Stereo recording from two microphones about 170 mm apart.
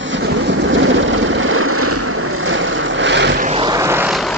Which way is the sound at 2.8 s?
90° right.